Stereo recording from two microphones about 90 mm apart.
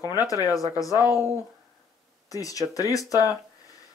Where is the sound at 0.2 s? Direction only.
40° left (ahead or behind).